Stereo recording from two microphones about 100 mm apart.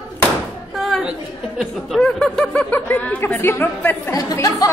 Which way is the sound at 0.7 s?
Centre (ahead or behind).